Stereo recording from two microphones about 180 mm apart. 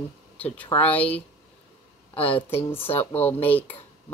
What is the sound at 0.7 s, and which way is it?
Speech, 10° left (ahead or behind).